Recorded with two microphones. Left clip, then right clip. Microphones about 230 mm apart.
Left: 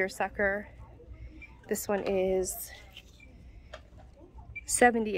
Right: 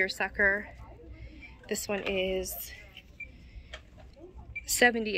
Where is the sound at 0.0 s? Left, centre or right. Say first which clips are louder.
Right 2 dB; centre.